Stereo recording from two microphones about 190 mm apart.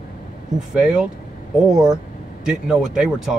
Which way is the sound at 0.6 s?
5° right (ahead or behind).